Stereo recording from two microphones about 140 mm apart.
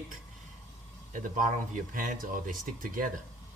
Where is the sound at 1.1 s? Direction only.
70° right (ahead or behind).